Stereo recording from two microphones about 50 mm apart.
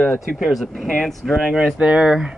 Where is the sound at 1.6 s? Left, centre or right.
Centre.